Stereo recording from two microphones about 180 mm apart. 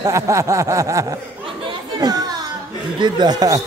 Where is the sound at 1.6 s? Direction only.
20° right (ahead or behind).